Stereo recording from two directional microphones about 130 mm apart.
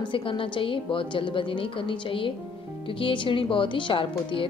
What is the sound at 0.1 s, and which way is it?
A woman's voice, 45° left (ahead or behind).